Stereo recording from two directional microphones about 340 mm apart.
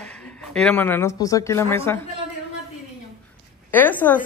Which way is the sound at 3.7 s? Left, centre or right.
Centre.